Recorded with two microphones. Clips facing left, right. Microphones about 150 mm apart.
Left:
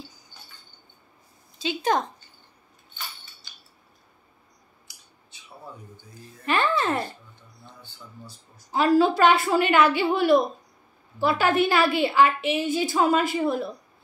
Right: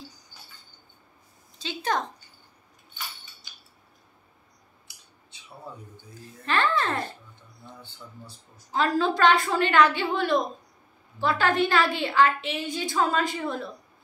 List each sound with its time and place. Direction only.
1.6 s a woman's voice: 15° left (ahead or behind)
6.4 s music: 15° left (ahead or behind)
8.7 s a woman's voice: 10° left (ahead or behind)